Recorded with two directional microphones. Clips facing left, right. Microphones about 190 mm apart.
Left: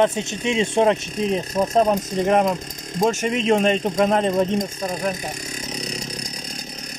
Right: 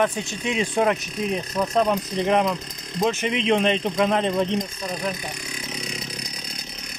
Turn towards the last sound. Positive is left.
turn(degrees=40)  # may be behind; listen again after turning